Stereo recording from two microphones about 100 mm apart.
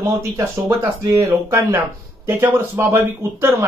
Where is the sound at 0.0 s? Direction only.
30° right (ahead or behind).